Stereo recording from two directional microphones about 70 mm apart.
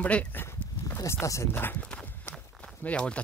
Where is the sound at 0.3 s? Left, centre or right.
Left.